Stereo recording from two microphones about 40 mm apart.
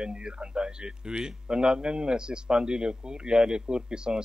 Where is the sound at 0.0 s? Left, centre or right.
Right.